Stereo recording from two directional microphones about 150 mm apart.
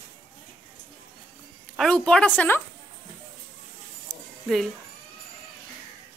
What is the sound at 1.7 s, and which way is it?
Speech, 5° left (ahead or behind).